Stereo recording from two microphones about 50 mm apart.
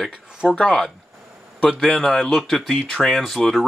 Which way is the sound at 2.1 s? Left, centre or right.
Centre.